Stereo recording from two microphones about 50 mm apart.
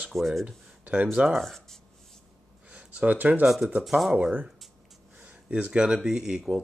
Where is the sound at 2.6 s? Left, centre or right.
Right.